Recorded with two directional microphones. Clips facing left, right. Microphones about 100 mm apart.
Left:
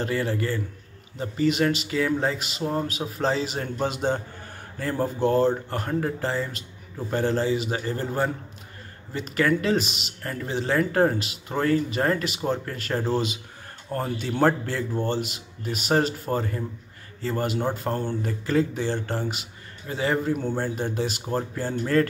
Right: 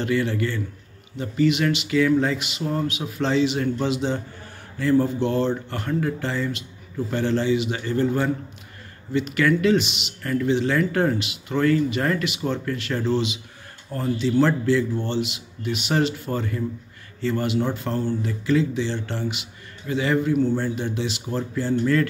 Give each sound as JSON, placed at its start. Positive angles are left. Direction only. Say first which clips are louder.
{"t": 0.0, "sound": "a man's voice", "louder": "right 3 dB", "side_deg": 35}